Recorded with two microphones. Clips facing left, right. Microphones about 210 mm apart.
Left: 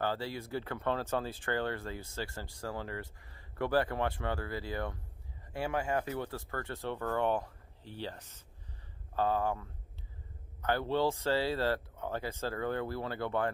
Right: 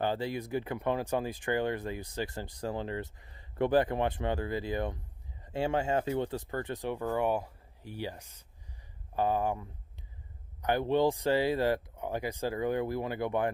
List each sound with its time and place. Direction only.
0.0 s speech: 20° right (ahead or behind)